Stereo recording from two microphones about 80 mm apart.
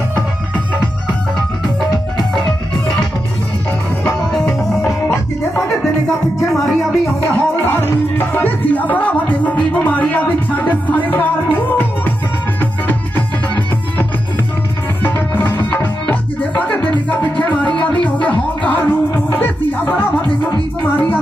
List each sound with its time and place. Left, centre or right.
4.3 s music: centre
7.2 s music: left
15.0 s music: left